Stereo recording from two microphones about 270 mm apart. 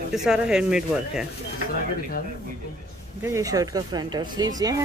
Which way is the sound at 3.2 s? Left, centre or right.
Centre.